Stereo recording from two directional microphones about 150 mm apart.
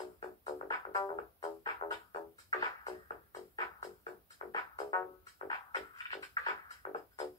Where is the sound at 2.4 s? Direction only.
25° left (ahead or behind).